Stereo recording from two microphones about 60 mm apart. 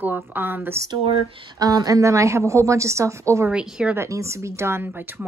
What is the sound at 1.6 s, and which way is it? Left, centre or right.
A woman's voice, right.